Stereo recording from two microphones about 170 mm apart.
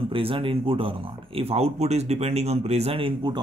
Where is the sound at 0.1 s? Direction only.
30° right (ahead or behind).